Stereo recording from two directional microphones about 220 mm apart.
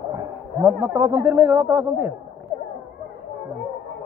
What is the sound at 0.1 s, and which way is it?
Speech, 10° right (ahead or behind).